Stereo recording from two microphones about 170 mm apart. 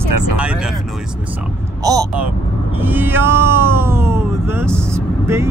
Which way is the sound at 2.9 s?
15° right (ahead or behind).